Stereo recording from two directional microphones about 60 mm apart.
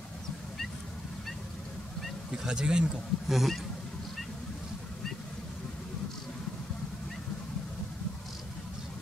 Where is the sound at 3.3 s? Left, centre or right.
Centre.